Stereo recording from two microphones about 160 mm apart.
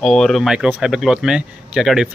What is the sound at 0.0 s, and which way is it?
Speech, centre (ahead or behind).